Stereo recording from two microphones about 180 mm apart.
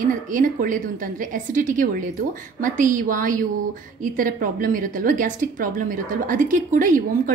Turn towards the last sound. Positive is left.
turn(degrees=-50)  # may be behind; listen again after turning